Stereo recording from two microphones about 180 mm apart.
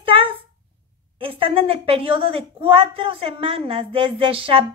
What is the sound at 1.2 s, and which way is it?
Speech, 30° right (ahead or behind).